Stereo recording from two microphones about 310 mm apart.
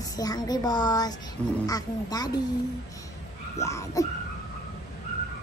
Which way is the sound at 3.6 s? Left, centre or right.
Centre.